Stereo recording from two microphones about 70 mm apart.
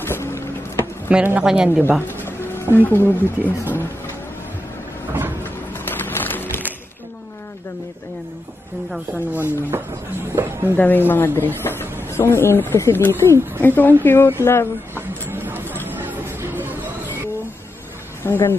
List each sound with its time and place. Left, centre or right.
0.0 s vehicle: left
1.1 s speech: centre
1.7 s speech: right
2.0 s a sound: left
2.8 s speech: left
5.4 s music: left
9.1 s speech: right
10.3 s speech: right
10.8 s speech: left
15.0 s a sound: right
18.2 s speech: left